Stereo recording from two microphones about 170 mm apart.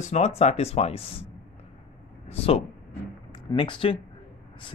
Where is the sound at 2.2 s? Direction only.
35° left (ahead or behind).